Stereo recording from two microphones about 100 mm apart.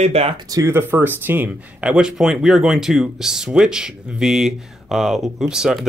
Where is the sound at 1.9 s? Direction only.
5° right (ahead or behind).